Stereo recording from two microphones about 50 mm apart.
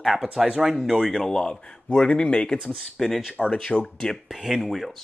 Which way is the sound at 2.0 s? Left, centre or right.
Left.